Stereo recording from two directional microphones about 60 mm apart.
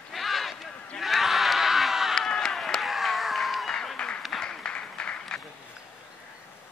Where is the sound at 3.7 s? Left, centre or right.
Centre.